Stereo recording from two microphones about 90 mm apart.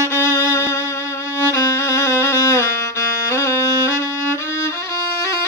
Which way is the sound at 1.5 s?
35° left (ahead or behind).